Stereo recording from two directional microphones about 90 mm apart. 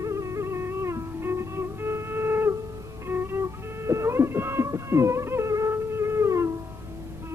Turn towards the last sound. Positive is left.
turn(degrees=-35)  # may be behind; listen again after turning